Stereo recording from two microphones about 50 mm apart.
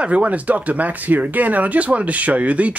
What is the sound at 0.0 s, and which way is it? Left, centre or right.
Speech, right.